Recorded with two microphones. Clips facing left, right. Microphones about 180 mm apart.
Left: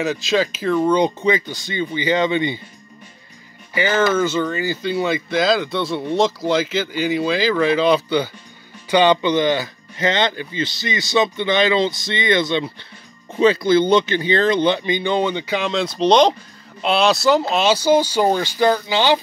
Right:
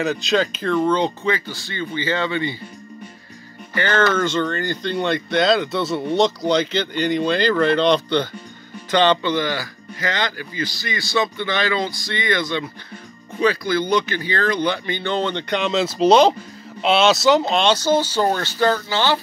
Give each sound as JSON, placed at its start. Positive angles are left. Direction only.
{"t": 0.0, "sound": "speech", "side_deg": 0}
{"t": 3.7, "sound": "speech", "side_deg": 10}